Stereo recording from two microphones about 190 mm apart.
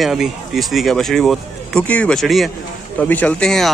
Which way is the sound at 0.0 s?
Centre (ahead or behind).